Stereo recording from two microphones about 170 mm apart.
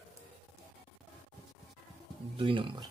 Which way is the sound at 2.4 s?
30° right (ahead or behind).